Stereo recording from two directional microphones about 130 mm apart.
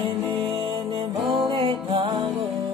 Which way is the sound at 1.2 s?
Centre (ahead or behind).